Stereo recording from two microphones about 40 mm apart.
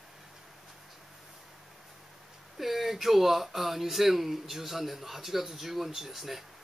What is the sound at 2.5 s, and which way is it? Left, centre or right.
Speech, centre.